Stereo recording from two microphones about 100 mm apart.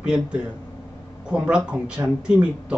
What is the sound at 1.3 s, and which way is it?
Speech, 10° right (ahead or behind).